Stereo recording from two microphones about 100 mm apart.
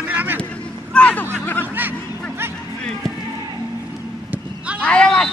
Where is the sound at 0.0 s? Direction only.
15° right (ahead or behind).